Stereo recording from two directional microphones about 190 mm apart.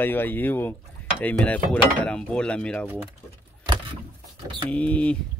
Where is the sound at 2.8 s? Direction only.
10° right (ahead or behind).